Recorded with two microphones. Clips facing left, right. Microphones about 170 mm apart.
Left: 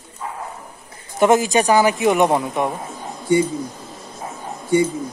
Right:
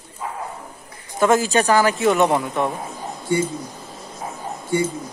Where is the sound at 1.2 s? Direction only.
20° left (ahead or behind).